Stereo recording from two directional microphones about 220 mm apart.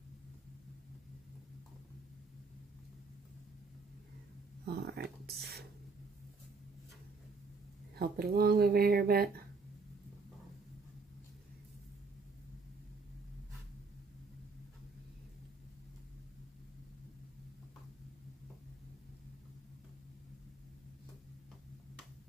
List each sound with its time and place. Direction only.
4.6 s speech: 45° right (ahead or behind)
7.9 s speech: 45° right (ahead or behind)